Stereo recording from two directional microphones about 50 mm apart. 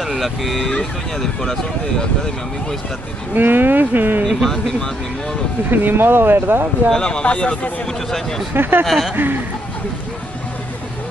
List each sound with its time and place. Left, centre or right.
0.0 s speech: centre
3.3 s speech: right
4.2 s speech: centre
5.7 s speech: right
6.9 s speech: centre
7.8 s speech: centre
8.5 s speech: right
8.8 s speech: centre
9.1 s speech: right